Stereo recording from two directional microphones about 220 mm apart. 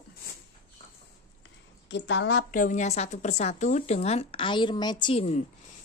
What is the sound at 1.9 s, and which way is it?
Speech, 55° left (ahead or behind).